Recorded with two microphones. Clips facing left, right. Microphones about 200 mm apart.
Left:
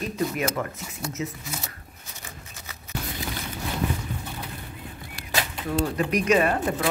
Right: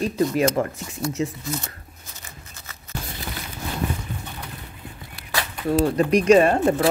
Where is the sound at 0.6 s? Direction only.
35° right (ahead or behind).